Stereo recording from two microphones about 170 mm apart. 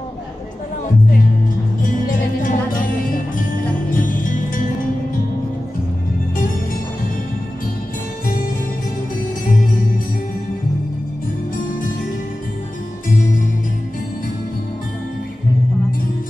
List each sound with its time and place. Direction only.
1.8 s music: 50° left (ahead or behind)